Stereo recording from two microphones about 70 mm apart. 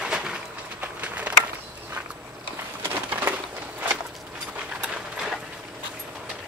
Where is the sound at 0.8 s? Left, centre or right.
Right.